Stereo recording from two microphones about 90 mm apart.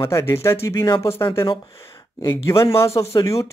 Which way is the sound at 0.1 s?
30° left (ahead or behind).